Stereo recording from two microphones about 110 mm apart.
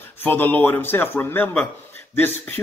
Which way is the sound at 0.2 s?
20° left (ahead or behind).